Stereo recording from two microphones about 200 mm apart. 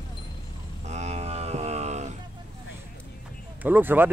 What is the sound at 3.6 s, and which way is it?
Speech, 10° right (ahead or behind).